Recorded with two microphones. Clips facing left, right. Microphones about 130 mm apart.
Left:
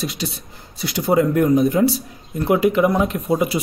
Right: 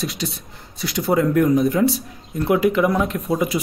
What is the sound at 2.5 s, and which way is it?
Speech, centre (ahead or behind).